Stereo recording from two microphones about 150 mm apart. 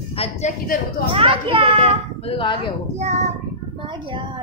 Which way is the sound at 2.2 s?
35° left (ahead or behind).